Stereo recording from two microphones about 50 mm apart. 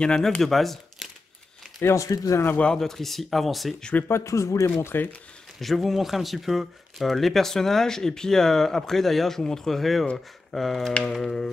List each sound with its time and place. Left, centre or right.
0.0 s a sound: centre
0.4 s speech: centre
1.8 s speech: left
2.8 s speech: centre
4.1 s speech: left
4.8 s speech: left
5.6 s speech: centre
11.2 s a sound: centre